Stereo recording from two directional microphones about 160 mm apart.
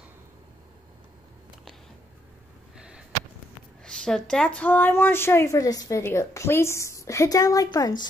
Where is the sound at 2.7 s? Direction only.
5° right (ahead or behind).